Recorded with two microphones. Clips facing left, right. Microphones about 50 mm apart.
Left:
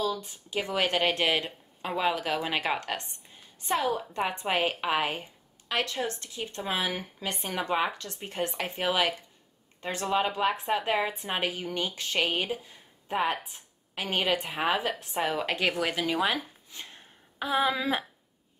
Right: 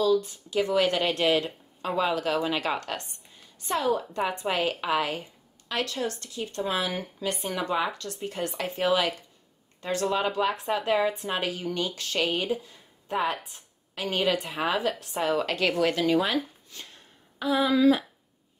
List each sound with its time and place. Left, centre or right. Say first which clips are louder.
0.0 s speech: right 7 dB; left
1.9 s speech: right 2 dB; centre